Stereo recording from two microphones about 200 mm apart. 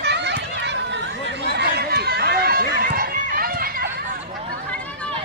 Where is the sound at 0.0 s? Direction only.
60° right (ahead or behind).